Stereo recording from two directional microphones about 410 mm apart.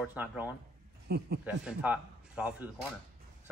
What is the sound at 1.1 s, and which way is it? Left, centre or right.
Speech, right.